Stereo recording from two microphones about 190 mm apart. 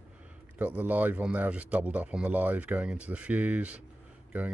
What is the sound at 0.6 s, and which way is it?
A man's voice, 10° right (ahead or behind).